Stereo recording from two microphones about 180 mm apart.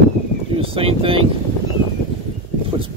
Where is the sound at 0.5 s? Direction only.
30° right (ahead or behind).